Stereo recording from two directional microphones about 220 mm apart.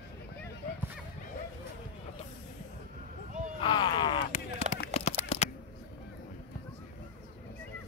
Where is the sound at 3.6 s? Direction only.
20° left (ahead or behind).